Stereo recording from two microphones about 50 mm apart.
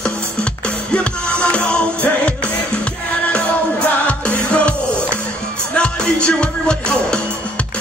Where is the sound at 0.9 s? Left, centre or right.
Left.